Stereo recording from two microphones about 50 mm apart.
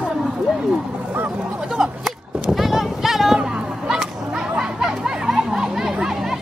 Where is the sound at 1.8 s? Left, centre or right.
Centre.